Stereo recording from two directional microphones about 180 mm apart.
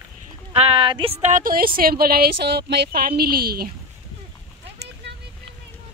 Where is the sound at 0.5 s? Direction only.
30° right (ahead or behind); by 3.7 s 60° right (ahead or behind).